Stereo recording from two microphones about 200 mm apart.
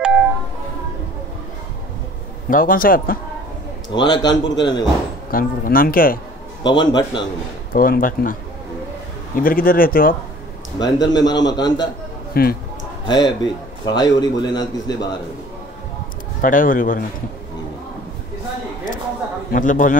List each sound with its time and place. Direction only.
0.0 s a sound: 5° right (ahead or behind)
2.5 s speech: 45° left (ahead or behind)
3.9 s a man's voice: 25° left (ahead or behind)
5.3 s speech: 45° left (ahead or behind)
6.9 s a man's voice: 25° left (ahead or behind)
7.7 s speech: 45° left (ahead or behind)
10.8 s a man's voice: 20° left (ahead or behind)
12.4 s speech: 50° left (ahead or behind)
13.0 s a man's voice: 20° left (ahead or behind)
16.3 s speech: 45° left (ahead or behind)
19.5 s a man's voice: 40° left (ahead or behind)